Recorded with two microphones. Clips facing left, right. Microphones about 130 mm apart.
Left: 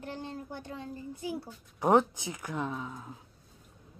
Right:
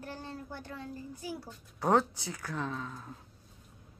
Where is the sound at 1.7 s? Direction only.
15° left (ahead or behind).